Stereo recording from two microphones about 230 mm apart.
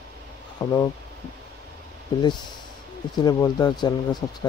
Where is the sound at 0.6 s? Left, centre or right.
Centre.